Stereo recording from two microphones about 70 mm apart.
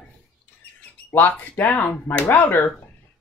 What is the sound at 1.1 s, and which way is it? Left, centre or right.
Speech, left.